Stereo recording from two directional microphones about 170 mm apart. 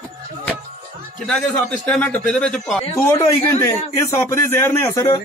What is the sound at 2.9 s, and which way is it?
A man's voice, 15° left (ahead or behind).